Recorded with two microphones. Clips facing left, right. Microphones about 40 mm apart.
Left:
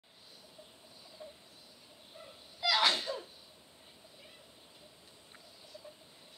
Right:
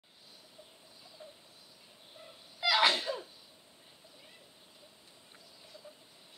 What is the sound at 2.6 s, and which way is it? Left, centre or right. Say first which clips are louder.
Sneeze: right 2 dB; right.